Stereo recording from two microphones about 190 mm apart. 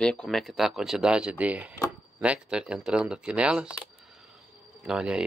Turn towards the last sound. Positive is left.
turn(degrees=-5)  # may be behind; listen again after turning